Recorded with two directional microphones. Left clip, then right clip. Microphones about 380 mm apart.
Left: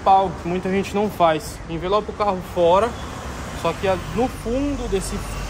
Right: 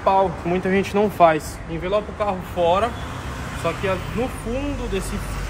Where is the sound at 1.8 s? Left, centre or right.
Centre.